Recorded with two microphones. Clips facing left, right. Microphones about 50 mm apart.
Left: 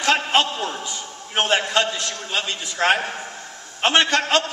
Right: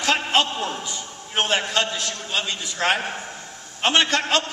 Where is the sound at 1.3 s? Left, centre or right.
Left.